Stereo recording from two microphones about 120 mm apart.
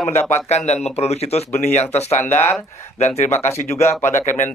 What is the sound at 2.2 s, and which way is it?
Speech, 15° left (ahead or behind).